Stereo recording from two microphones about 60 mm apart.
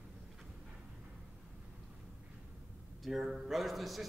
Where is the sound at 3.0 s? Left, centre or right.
Centre.